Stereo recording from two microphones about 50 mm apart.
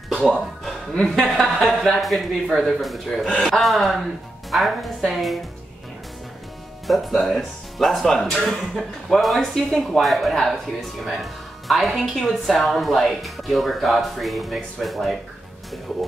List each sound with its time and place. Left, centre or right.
0.1 s music: centre
0.9 s a woman's voice: centre
1.3 s speech: centre
6.9 s speech: centre